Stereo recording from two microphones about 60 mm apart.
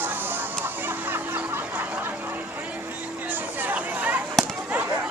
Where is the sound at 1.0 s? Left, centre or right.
Right.